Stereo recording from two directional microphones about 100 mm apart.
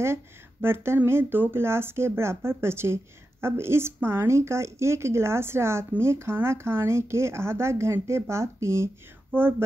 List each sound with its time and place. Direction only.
0.0 s speech: 25° right (ahead or behind)